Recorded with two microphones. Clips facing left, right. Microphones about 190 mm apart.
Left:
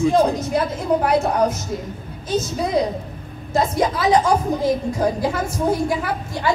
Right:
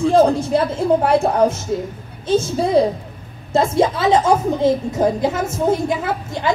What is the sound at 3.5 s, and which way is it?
A woman's voice, 25° right (ahead or behind).